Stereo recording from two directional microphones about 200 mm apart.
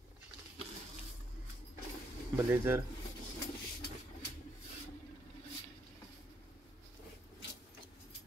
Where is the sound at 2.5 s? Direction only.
10° right (ahead or behind).